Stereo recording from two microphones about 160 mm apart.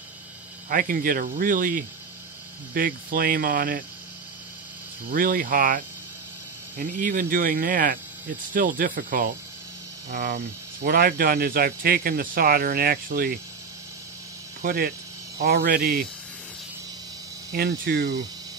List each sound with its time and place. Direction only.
0.7 s speech: 65° right (ahead or behind)
5.1 s speech: 60° right (ahead or behind)
14.6 s speech: 70° right (ahead or behind)
17.5 s speech: 90° right